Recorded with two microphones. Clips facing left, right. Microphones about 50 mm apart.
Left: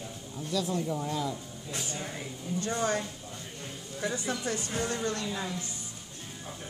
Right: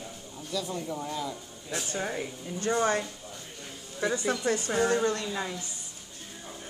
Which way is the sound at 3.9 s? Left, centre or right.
Right.